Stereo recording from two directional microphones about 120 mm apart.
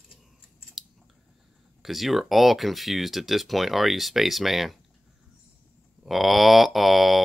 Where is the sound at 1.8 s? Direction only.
Centre (ahead or behind).